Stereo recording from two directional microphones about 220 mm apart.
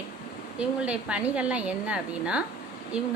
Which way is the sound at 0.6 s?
5° right (ahead or behind).